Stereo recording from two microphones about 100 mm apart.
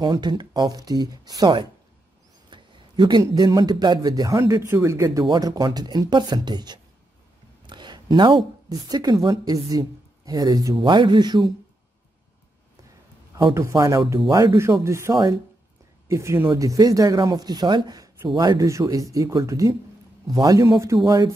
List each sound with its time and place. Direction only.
0.0 s speech: 45° right (ahead or behind)
2.5 s speech: 50° right (ahead or behind); by 5.2 s 30° right (ahead or behind)
5.2 s speech: 45° right (ahead or behind)
7.6 s a sound: 50° right (ahead or behind)
8.6 s speech: 40° right (ahead or behind)
10.8 s speech: 50° right (ahead or behind)
13.7 s speech: 35° right (ahead or behind)